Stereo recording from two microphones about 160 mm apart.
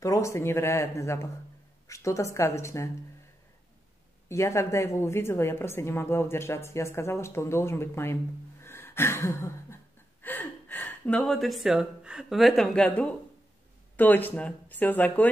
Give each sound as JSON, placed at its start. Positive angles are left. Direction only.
{"t": 0.0, "sound": "a woman's voice", "side_deg": 20}
{"t": 4.3, "sound": "a woman's voice", "side_deg": 15}